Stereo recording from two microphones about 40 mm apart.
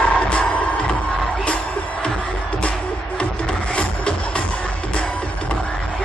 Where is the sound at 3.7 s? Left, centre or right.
Left.